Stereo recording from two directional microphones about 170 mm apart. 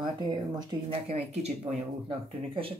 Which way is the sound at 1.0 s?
40° right (ahead or behind).